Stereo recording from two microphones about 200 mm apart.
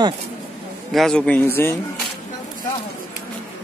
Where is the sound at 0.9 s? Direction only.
5° left (ahead or behind).